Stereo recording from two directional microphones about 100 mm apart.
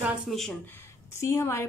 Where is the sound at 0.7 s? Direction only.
25° left (ahead or behind).